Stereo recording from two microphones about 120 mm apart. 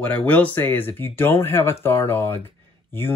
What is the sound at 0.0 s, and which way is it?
Speech, 15° left (ahead or behind).